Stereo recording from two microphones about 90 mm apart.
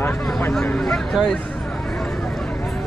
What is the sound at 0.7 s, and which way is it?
Speech, 5° left (ahead or behind).